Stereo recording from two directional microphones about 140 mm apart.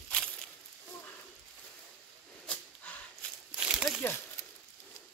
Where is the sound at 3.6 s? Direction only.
5° right (ahead or behind).